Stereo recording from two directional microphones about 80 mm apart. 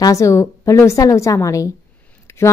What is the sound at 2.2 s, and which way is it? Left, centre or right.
Scissors, left.